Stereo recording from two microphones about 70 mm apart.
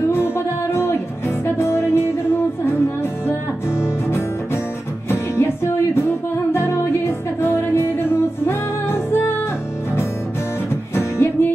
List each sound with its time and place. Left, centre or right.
0.1 s music: left
5.3 s music: left
11.0 s music: left